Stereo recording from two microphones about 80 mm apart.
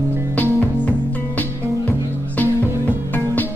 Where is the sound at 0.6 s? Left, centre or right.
Left.